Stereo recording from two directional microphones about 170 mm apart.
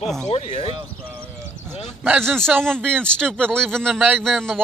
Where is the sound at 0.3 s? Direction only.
35° left (ahead or behind).